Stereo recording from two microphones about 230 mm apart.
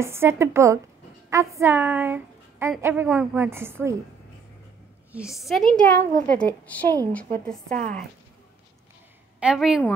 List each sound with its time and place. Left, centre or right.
0.0 s a woman's voice: centre
5.1 s a woman's voice: centre
7.7 s speech: right
9.4 s a woman's voice: centre